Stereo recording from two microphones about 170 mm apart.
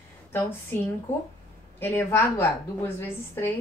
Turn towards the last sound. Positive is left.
turn(degrees=15)  # may be behind; listen again after turning